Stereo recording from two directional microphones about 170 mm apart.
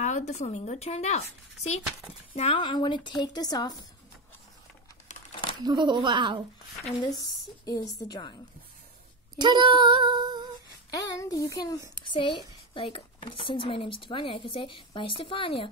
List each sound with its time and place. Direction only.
0.0 s a woman's voice: 45° left (ahead or behind)
2.3 s a woman's voice: 35° left (ahead or behind)
5.6 s female singing: 25° right (ahead or behind)
7.0 s a woman's voice: 20° left (ahead or behind)
9.4 s female singing: 25° right (ahead or behind)
10.9 s a woman's voice: 20° left (ahead or behind)